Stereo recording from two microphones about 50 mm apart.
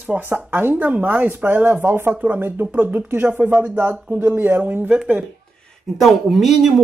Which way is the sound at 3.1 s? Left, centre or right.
Right.